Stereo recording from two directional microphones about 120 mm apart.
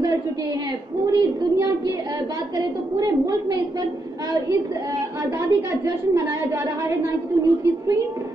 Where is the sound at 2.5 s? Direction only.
30° right (ahead or behind).